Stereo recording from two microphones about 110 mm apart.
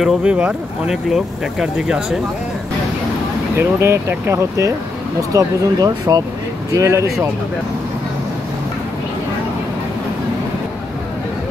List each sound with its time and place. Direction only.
0.0 s speech: 5° right (ahead or behind)
3.5 s speech: 20° right (ahead or behind)